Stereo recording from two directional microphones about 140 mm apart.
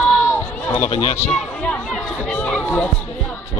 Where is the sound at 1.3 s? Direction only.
5° left (ahead or behind).